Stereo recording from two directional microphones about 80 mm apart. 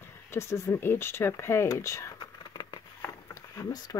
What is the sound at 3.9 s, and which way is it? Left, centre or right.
Speech, left.